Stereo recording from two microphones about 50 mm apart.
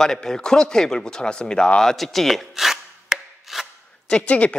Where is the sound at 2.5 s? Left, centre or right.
Centre.